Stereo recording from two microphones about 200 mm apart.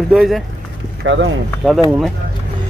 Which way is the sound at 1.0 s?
65° right (ahead or behind).